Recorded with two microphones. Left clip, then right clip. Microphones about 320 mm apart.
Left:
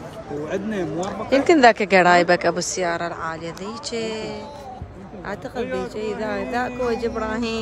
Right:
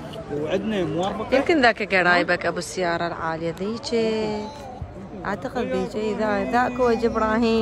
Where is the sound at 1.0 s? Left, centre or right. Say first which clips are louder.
Left 4 dB; centre.